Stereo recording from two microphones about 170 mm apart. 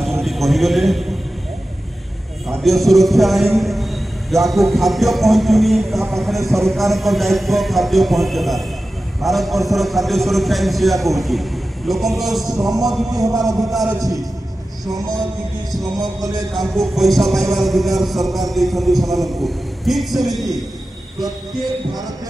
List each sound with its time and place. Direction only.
0.0 s a sound: centre (ahead or behind)
2.4 s a man's voice: centre (ahead or behind)
13.8 s music: 20° right (ahead or behind)
15.8 s music: 20° right (ahead or behind)
16.8 s a man's voice: centre (ahead or behind)